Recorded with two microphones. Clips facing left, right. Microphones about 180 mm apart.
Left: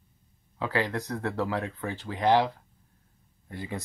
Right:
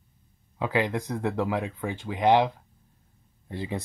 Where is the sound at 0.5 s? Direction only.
15° right (ahead or behind).